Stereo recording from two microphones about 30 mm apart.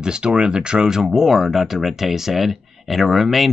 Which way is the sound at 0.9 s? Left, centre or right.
Centre.